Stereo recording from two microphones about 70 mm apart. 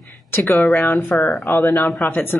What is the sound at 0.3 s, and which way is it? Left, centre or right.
A woman's voice, left.